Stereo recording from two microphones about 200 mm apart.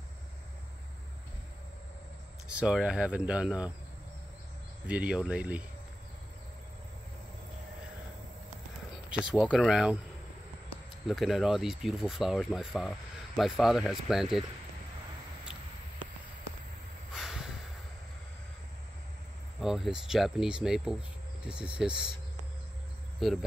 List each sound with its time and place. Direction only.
2.4 s speech: 5° right (ahead or behind)
4.8 s speech: 5° right (ahead or behind)
9.1 s speech: 5° right (ahead or behind)
11.1 s speech: centre (ahead or behind)
17.1 s a sound: 5° right (ahead or behind)
19.6 s speech: centre (ahead or behind)
23.2 s speech: centre (ahead or behind)